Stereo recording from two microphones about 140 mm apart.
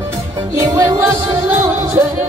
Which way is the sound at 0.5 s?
20° right (ahead or behind).